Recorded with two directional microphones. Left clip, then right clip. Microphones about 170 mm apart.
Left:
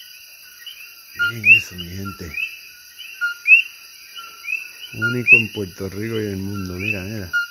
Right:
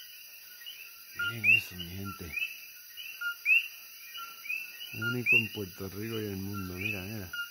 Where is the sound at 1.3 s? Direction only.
10° right (ahead or behind).